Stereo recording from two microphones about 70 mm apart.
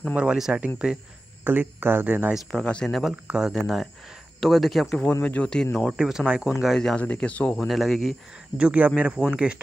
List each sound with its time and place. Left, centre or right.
0.1 s speech: centre
1.4 s speech: right
2.5 s speech: centre
2.9 s speech: centre
3.5 s speech: centre
5.2 s speech: centre
5.8 s speech: centre
6.6 s speech: centre
7.0 s speech: centre
7.5 s speech: centre
8.5 s speech: right